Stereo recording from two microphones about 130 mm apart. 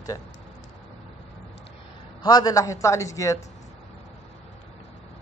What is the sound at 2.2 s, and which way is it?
Speech, 30° left (ahead or behind).